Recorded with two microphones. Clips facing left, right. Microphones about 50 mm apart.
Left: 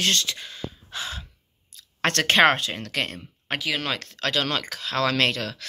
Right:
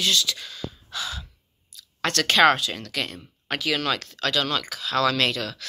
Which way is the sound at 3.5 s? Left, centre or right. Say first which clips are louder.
Right 2 dB; centre.